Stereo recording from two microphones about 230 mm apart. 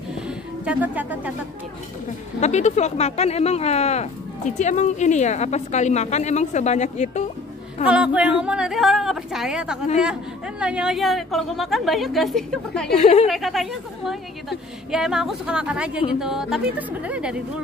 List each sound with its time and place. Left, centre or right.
0.7 s a woman's voice: centre
2.4 s speech: left
7.9 s a woman's voice: centre
12.9 s speech: left
13.3 s a woman's voice: centre